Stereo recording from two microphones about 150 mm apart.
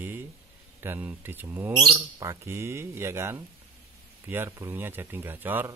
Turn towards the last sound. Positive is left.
turn(degrees=-15)  # may be behind; listen again after turning